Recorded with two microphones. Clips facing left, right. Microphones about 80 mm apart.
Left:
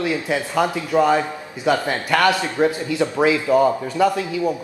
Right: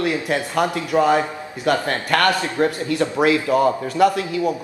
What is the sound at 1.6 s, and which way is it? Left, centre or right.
A man's voice, centre.